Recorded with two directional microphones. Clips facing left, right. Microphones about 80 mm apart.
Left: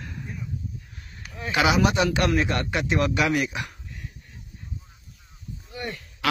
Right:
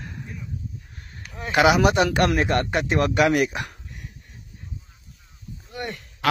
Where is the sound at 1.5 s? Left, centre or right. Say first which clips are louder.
Right 4 dB; right.